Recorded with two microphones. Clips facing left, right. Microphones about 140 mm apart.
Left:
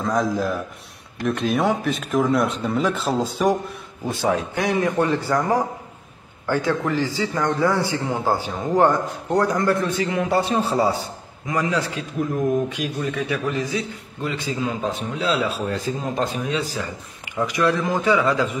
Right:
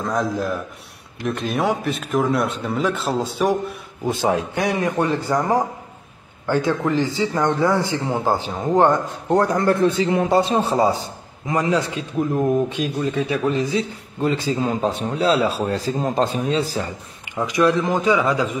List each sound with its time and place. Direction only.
0.0 s speech: centre (ahead or behind)
4.0 s a man's voice: 20° right (ahead or behind)
17.4 s a man's voice: 20° right (ahead or behind)